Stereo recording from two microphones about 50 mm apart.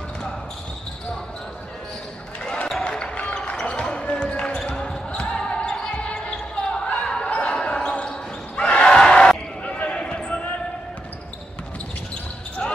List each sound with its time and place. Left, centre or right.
2.4 s basketball bounce: centre